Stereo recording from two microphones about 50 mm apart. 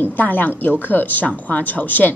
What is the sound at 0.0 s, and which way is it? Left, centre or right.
Speech, left.